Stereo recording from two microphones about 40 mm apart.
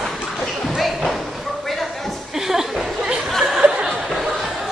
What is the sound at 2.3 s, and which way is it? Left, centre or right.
Chuckle, centre.